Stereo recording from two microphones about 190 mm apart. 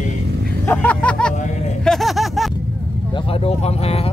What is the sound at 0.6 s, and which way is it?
Vehicle, 10° left (ahead or behind).